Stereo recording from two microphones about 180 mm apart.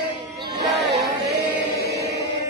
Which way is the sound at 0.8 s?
70° right (ahead or behind).